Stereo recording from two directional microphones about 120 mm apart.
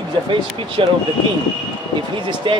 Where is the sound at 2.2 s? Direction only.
45° right (ahead or behind).